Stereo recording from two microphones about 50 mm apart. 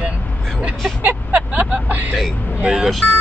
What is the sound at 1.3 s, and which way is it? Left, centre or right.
Speech, right.